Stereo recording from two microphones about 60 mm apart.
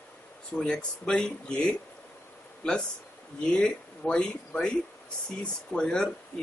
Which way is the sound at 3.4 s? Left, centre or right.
Centre.